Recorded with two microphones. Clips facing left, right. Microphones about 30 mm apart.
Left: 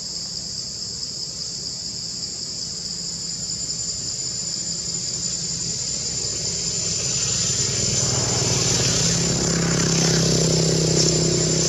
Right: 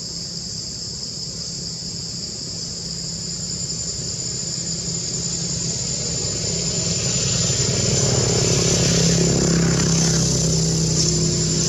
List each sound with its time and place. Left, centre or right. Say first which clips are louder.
5.4 s vehicle: right 2 dB; centre; by 11.5 s left